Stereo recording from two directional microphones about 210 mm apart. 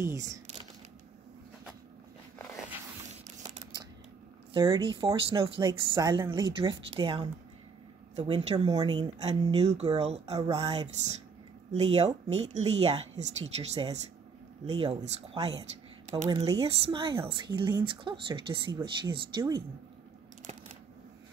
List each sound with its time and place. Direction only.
0.0 s speech: 15° right (ahead or behind)
4.6 s speech: 25° right (ahead or behind)
8.3 s speech: 25° right (ahead or behind)
16.3 s speech: 30° right (ahead or behind)